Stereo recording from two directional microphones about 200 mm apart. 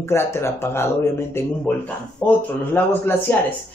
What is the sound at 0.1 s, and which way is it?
Speech, 15° left (ahead or behind).